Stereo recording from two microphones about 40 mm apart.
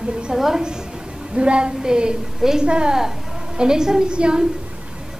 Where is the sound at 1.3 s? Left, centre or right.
Right.